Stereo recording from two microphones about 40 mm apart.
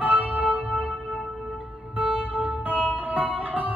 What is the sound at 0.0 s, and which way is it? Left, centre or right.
Music, right.